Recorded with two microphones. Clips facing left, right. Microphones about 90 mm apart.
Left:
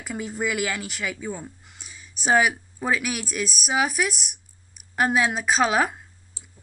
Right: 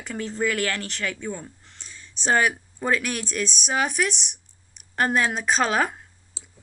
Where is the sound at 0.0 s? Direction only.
5° left (ahead or behind).